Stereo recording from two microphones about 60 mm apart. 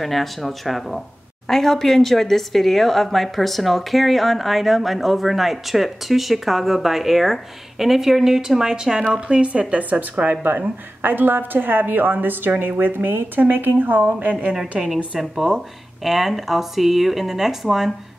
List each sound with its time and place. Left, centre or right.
0.0 s speech: centre
9.1 s speech: centre
15.1 s speech: centre